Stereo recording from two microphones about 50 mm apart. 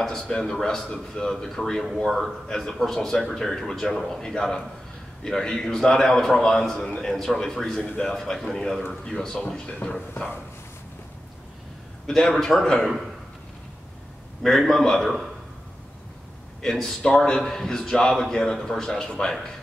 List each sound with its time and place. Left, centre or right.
0.3 s a man's voice: centre
12.1 s a man's voice: centre
14.4 s a man's voice: centre
16.6 s a man's voice: centre